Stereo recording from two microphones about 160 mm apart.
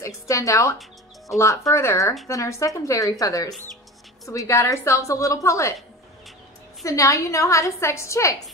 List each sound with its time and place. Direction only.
0.0 s a woman's voice: 20° left (ahead or behind)
6.8 s a woman's voice: 20° left (ahead or behind)